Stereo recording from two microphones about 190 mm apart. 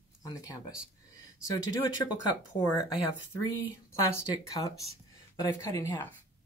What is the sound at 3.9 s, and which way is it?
Speech, 15° left (ahead or behind).